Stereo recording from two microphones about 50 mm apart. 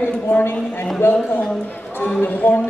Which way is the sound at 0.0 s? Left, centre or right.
Left.